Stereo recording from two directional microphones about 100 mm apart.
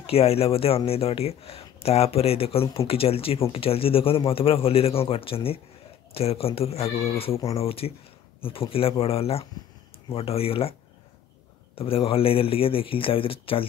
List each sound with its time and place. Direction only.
0.0 s speech: 85° left
7.1 s speech: 75° left (ahead or behind)
11.7 s speech: 70° left (ahead or behind)